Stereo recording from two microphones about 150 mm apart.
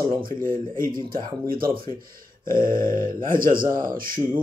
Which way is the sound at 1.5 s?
75° right (ahead or behind).